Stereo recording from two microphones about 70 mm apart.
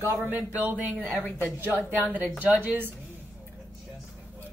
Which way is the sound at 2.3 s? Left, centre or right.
Right.